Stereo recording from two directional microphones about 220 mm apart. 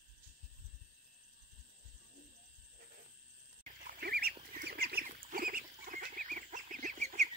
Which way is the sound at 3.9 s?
45° right (ahead or behind).